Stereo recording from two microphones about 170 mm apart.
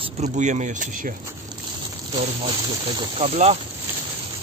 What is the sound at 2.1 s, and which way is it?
Speech, 40° right (ahead or behind).